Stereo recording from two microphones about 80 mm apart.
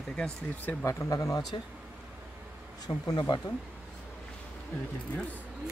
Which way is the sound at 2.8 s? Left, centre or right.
Left.